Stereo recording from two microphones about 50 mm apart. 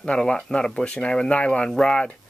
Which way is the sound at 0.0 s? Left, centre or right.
Centre.